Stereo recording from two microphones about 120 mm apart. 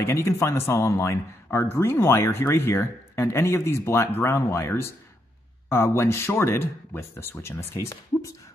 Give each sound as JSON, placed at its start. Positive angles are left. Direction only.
{"t": 0.0, "sound": "speech", "side_deg": 20}